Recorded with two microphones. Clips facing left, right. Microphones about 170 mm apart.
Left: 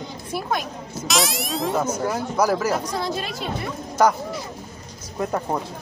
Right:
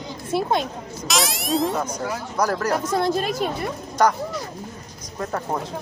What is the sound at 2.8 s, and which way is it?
Speech, 50° right (ahead or behind).